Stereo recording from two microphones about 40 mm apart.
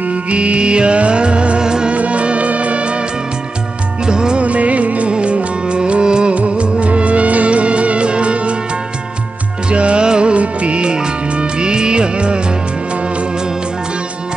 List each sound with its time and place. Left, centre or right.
0.0 s music: right
2.0 s music: right
9.7 s music: right